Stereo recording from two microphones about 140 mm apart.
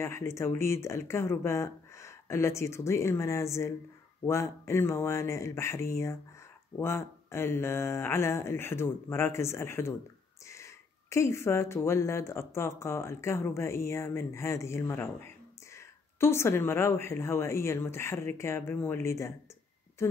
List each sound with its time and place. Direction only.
0.0 s speech: 20° left (ahead or behind)